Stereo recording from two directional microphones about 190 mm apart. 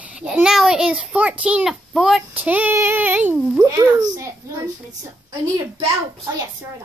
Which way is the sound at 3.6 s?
15° right (ahead or behind).